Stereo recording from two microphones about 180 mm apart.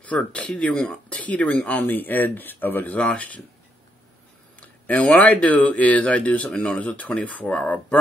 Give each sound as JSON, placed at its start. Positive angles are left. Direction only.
{"t": 0.0, "sound": "speech", "side_deg": 10}
{"t": 4.6, "sound": "speech", "side_deg": 10}